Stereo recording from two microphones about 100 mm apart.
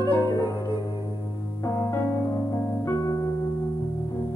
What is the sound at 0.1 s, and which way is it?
Music, 30° left (ahead or behind).